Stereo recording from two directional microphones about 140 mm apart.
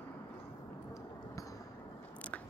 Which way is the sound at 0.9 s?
25° left (ahead or behind).